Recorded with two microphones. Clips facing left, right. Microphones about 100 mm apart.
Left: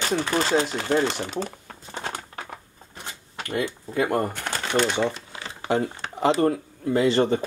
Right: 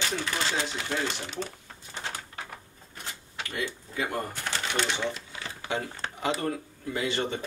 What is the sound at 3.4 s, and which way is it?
Speech, 50° left (ahead or behind).